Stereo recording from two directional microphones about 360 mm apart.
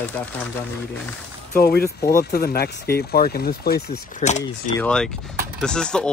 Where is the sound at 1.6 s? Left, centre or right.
Left.